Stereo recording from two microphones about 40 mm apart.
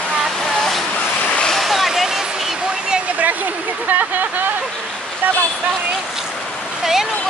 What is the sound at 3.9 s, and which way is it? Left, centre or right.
Speech, right.